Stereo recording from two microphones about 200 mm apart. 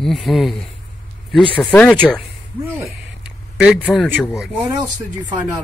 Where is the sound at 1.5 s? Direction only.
5° left (ahead or behind).